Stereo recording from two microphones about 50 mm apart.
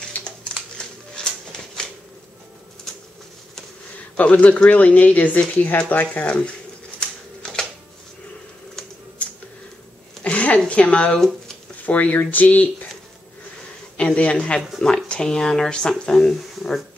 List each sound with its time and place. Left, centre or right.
0.0 s a sound: centre
4.2 s speech: left
6.1 s a man's voice: left
7.0 s typewriter: centre
9.2 s typing: left
10.2 s a sound: left
10.7 s a man's voice: left
11.8 s speech: left
13.9 s a man's voice: left; by 16.3 s centre